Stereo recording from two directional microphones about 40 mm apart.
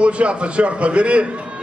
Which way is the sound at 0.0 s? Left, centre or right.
Right.